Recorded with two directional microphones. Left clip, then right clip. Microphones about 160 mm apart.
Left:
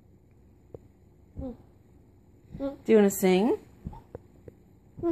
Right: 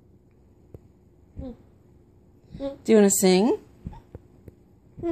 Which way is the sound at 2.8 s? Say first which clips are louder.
Right 3 dB; 40° right (ahead or behind).